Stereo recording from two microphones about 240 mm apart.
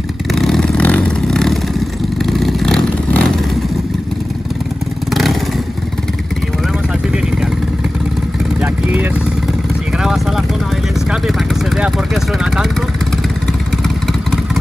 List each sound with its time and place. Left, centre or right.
0.3 s vehicle: centre
5.1 s vehicle: centre
10.0 s vehicle: centre
13.8 s vehicle: centre